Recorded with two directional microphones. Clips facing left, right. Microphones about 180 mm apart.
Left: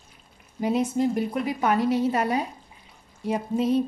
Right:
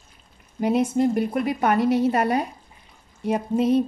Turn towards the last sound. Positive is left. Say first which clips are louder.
# right 3 dB
turn(degrees=-60)  # may be behind; listen again after turning